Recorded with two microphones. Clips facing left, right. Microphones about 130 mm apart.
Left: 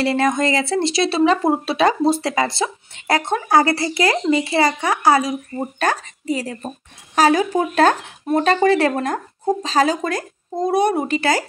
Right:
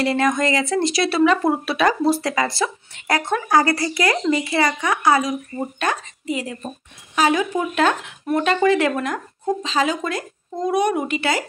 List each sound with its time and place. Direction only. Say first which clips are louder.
0.0 s speech: left 1 dB; 30° left (ahead or behind)